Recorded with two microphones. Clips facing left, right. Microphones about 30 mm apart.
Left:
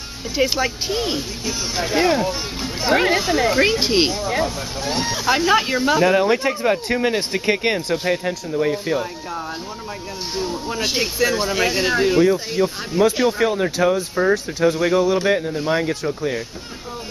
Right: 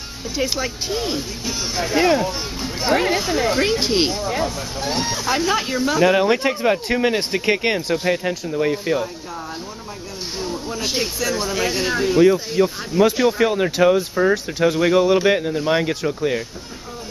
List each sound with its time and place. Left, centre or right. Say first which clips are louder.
0.4 s speech: left 4 dB; centre
6.1 s speech: even; centre
7.5 s speech: even; centre
10.3 s speech: left 2 dB; centre
12.2 s speech: right 2 dB; centre
13.5 s speech: right 2 dB; centre
14.1 s speech: even; centre
15.2 s speech: right 1 dB; centre